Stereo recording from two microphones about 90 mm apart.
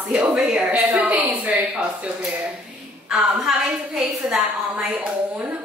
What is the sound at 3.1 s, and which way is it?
A woman's voice, 5° right (ahead or behind).